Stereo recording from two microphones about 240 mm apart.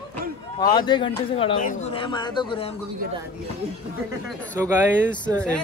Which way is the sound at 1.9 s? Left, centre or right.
Centre.